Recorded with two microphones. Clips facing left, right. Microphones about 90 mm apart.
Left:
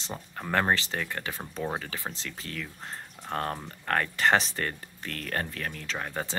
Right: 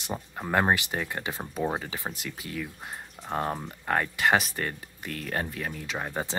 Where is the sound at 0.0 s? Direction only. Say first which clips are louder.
Right 3 dB; 15° right (ahead or behind).